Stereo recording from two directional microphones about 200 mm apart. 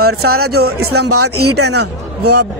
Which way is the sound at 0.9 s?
90° right.